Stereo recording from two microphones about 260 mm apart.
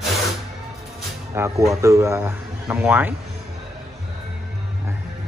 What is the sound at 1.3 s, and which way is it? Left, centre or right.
A man's voice, centre.